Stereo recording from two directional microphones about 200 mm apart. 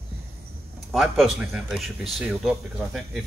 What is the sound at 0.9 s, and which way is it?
Speech, centre (ahead or behind).